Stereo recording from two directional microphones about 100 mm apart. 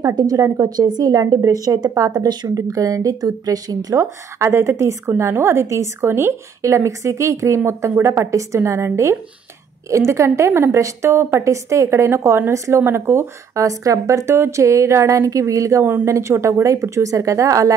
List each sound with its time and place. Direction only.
0.0 s a woman's voice: 40° right (ahead or behind)
4.0 s a woman's voice: 25° right (ahead or behind)
15.8 s a woman's voice: 20° right (ahead or behind)
16.1 s a woman's voice: 30° right (ahead or behind)